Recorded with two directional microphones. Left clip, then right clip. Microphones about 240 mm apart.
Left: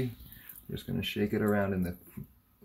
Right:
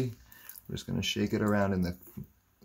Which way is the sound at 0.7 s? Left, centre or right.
Right.